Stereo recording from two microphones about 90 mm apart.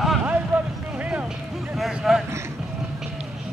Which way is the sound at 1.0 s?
15° right (ahead or behind).